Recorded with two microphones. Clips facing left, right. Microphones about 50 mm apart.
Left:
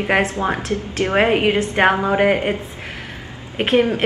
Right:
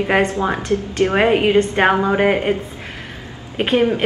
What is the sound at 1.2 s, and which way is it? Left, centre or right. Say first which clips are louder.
Speech: right 2 dB; centre.